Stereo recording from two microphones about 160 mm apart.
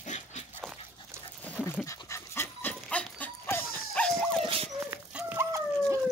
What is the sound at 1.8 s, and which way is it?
Dog, 20° left (ahead or behind).